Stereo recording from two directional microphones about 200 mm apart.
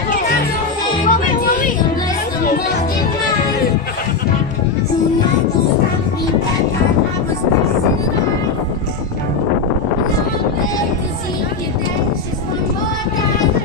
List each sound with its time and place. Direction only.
1.0 s music: 40° left (ahead or behind)